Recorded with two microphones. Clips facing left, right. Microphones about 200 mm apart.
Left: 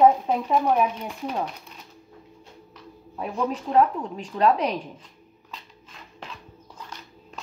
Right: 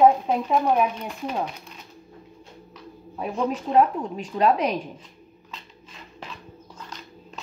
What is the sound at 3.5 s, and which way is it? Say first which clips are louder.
A woman's voice: right 1 dB; 10° right (ahead or behind).